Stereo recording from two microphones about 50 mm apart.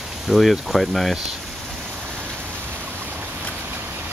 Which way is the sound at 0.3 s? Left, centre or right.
Centre.